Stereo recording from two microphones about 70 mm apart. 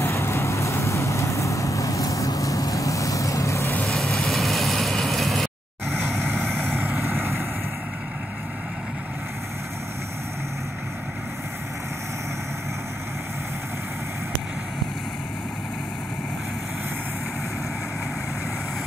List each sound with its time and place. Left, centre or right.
0.0 s vehicle: left
3.9 s vehicle: centre
6.7 s vehicle: right